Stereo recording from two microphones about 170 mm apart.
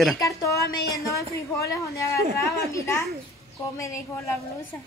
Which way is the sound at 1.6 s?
20° left (ahead or behind).